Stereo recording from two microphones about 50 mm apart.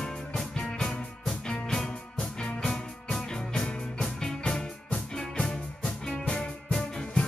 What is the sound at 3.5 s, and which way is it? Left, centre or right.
Music, left.